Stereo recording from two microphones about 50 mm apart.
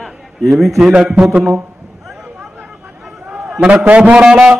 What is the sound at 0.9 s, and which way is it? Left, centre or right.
Speech, right.